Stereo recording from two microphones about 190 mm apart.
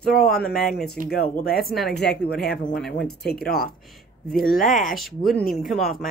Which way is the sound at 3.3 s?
55° left (ahead or behind).